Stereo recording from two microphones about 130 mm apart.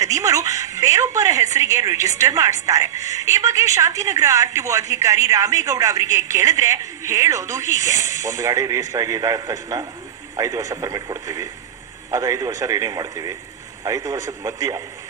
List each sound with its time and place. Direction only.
0.0 s a woman's voice: 25° right (ahead or behind)